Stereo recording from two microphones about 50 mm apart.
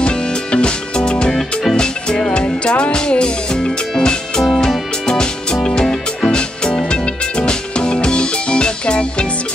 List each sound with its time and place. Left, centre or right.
0.0 s music: centre
1.3 s music: centre
1.8 s music: centre